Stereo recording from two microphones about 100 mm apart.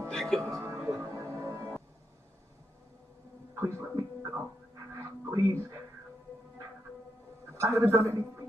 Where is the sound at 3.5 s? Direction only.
30° right (ahead or behind).